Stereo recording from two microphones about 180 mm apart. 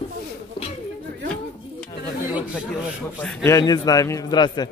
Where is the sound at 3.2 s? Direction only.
10° left (ahead or behind).